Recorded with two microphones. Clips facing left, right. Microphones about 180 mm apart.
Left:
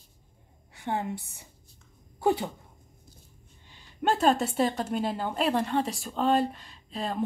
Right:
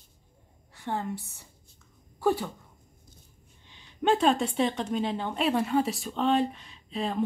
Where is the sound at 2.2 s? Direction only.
20° left (ahead or behind).